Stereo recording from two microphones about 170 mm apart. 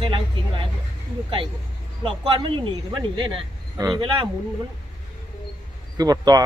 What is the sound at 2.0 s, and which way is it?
Speech, 30° right (ahead or behind).